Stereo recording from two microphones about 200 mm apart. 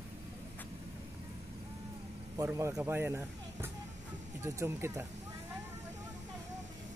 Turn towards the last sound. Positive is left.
turn(degrees=-15)  # may be behind; listen again after turning